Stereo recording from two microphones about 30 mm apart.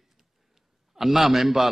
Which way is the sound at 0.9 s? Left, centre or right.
Centre.